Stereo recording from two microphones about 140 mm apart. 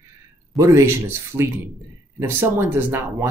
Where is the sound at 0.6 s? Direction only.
20° right (ahead or behind).